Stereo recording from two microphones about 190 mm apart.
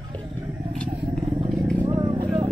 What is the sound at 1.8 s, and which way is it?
Vehicle, 25° right (ahead or behind).